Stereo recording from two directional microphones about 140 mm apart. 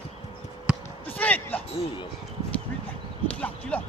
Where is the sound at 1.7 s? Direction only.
35° left (ahead or behind).